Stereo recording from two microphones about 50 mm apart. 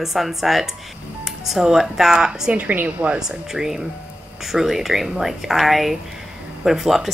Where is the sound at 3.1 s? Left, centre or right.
Centre.